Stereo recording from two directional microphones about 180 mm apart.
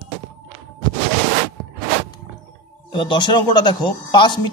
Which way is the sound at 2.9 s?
25° left (ahead or behind).